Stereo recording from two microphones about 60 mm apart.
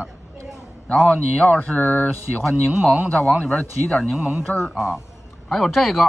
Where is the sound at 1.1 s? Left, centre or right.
Centre.